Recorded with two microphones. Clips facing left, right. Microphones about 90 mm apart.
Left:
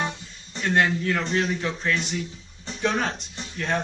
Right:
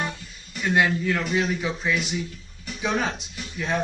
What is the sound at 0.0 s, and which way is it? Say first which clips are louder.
Music: left 1 dB; 25° left (ahead or behind).